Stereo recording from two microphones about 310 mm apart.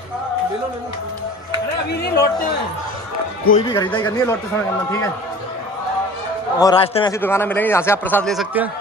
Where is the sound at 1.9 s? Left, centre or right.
Left.